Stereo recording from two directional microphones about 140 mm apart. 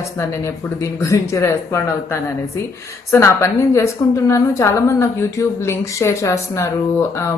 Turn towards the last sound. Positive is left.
turn(degrees=20)  # may be behind; listen again after turning